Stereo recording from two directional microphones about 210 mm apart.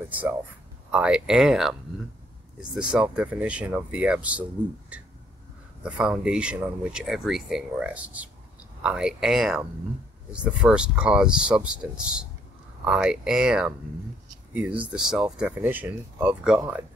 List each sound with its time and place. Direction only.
0.9 s speech: 5° right (ahead or behind)